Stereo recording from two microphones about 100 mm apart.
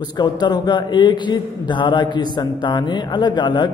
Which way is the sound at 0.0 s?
45° left (ahead or behind).